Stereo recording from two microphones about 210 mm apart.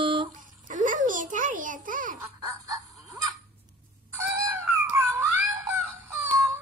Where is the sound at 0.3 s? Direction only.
40° right (ahead or behind).